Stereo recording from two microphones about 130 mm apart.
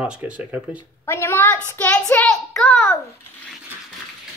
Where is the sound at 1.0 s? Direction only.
20° left (ahead or behind).